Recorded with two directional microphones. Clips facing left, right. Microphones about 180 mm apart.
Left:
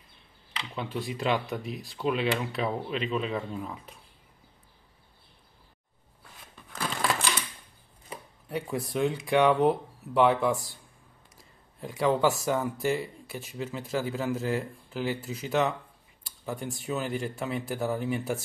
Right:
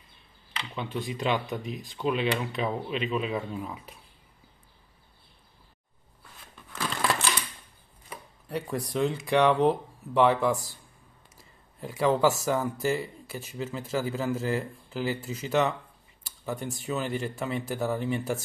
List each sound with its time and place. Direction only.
0.6 s speech: centre (ahead or behind)
8.5 s speech: centre (ahead or behind)
11.8 s speech: centre (ahead or behind)